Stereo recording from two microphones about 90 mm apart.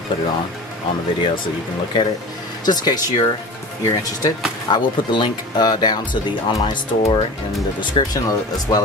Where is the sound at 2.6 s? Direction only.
50° left (ahead or behind).